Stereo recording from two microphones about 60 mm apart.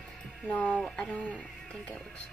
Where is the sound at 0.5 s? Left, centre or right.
Left.